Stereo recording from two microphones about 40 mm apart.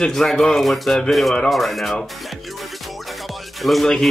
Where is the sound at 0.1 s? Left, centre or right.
Centre.